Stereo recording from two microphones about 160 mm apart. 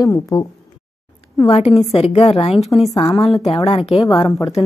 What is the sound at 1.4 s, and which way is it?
A woman's voice, 40° left (ahead or behind).